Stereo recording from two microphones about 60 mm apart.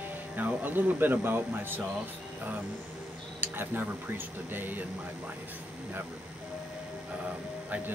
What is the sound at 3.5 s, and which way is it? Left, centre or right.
Speech, right.